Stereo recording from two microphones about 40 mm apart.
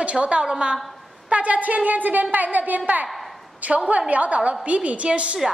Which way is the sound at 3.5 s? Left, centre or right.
Right.